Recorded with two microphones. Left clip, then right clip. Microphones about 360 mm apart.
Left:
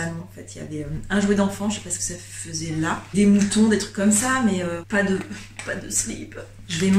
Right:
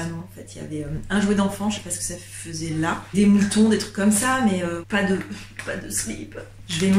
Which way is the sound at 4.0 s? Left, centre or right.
Centre.